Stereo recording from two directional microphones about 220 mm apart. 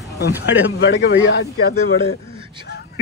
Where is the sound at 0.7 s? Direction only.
50° left (ahead or behind).